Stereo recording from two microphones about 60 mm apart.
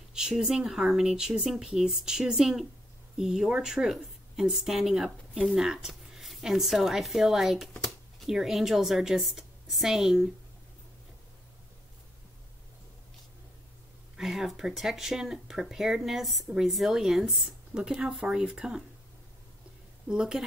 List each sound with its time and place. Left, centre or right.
0.1 s a woman's voice: centre
7.7 s a sound: centre
8.3 s speech: centre
14.1 s speech: centre
20.1 s a woman's voice: centre